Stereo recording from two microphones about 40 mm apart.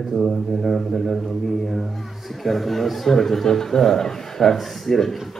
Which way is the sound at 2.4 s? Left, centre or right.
Centre.